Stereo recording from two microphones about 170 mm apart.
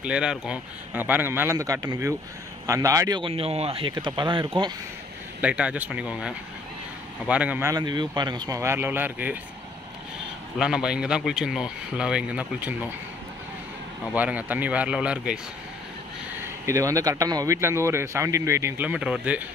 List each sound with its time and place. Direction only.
0.0 s speech: 5° right (ahead or behind); by 4.7 s 30° right (ahead or behind)
5.4 s speech: 5° right (ahead or behind)
7.7 s speech: 25° right (ahead or behind); by 9.4 s 10° right (ahead or behind)
10.6 s speech: 5° right (ahead or behind)
14.1 s speech: 10° right (ahead or behind)
16.6 s speech: 20° right (ahead or behind)